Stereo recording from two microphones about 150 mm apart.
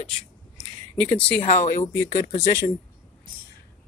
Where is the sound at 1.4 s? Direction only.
55° left (ahead or behind).